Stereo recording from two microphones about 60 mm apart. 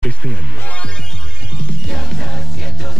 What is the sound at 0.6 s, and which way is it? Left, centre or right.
Music, left.